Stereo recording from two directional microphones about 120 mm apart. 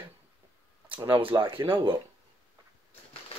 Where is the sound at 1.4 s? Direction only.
40° right (ahead or behind).